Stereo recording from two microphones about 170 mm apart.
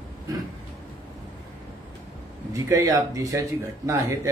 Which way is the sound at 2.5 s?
20° right (ahead or behind).